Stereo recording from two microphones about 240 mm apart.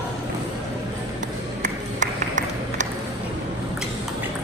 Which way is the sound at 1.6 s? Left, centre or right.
Right.